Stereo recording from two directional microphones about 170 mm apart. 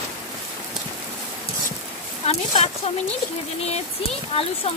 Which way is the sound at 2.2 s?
35° left (ahead or behind).